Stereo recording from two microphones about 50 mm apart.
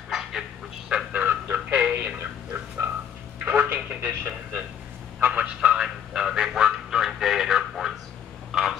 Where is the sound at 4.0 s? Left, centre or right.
Right.